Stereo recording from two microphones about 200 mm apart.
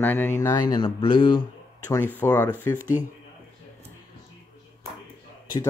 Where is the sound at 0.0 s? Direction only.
10° left (ahead or behind); by 1.4 s 25° left (ahead or behind).